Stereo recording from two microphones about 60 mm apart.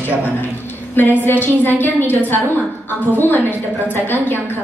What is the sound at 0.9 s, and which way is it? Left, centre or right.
A woman's voice, left.